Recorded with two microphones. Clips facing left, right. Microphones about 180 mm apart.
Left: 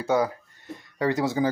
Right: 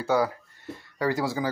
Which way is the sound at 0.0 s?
20° left (ahead or behind).